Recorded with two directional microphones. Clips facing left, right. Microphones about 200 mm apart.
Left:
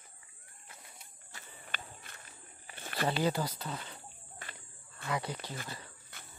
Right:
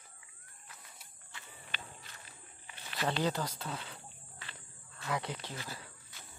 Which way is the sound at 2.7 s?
50° left (ahead or behind).